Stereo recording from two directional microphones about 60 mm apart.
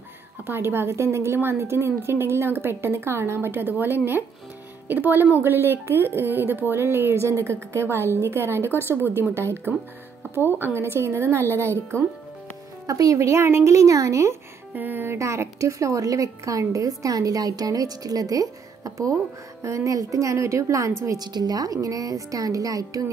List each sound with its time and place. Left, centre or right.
0.5 s a woman's voice: right
12.8 s a woman's voice: right
14.7 s speech: right
15.0 s a woman's voice: right
19.6 s a woman's voice: right
21.0 s a woman's voice: right
21.8 s a woman's voice: right